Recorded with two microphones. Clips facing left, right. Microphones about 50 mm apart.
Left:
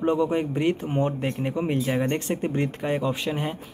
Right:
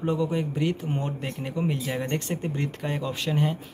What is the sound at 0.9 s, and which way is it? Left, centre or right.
Speech, left.